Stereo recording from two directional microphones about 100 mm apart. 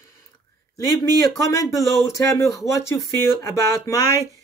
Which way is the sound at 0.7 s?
35° left (ahead or behind).